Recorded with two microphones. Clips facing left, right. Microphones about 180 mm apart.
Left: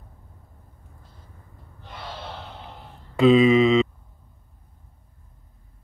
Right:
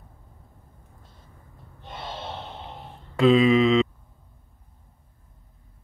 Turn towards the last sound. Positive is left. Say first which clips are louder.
# left 2 dB
turn(degrees=0)  # may be behind; listen again after turning